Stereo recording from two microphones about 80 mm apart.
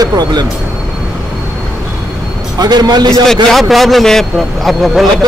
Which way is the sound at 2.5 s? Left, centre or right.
Right.